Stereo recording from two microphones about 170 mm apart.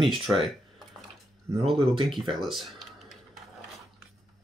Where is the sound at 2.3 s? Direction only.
Centre (ahead or behind).